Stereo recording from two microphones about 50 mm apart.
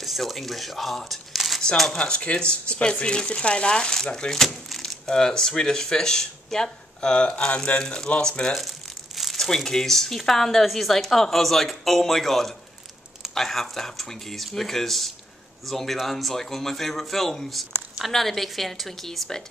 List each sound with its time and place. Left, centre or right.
0.0 s speech: centre
2.0 s speech: left
8.5 s crumpling: centre
9.5 s speech: centre